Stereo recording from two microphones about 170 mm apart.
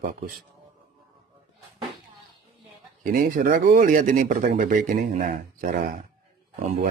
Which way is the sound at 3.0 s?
55° right (ahead or behind).